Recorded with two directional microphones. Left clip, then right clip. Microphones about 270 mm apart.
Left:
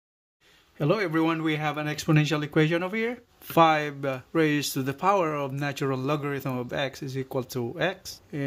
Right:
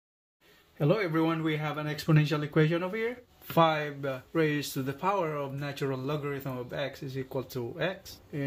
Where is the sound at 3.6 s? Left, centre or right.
Left.